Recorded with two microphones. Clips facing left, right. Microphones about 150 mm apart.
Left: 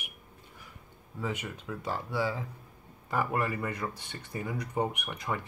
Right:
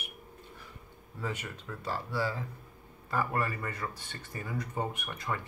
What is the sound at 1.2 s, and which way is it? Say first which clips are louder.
Speech: left 2 dB; 10° left (ahead or behind).